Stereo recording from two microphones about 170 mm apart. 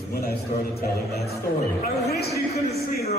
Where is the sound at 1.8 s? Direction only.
65° left (ahead or behind).